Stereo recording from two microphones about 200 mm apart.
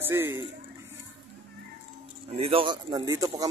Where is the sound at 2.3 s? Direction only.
30° right (ahead or behind).